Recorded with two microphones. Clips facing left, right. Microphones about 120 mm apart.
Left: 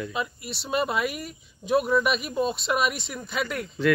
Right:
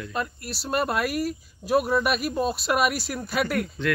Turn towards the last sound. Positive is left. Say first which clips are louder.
# right 3 dB
turn(degrees=0)  # may be behind; listen again after turning